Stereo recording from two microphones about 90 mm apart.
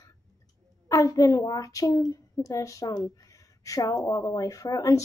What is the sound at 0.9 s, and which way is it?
Speech, 40° left (ahead or behind).